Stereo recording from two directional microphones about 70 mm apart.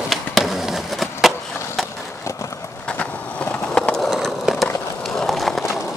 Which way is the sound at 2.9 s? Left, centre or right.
Centre.